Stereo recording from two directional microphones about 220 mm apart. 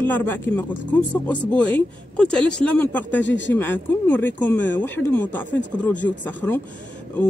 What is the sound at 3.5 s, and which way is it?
Speech, 10° left (ahead or behind).